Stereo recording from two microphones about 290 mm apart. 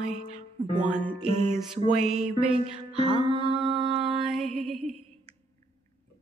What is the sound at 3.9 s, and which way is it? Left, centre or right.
Music, centre.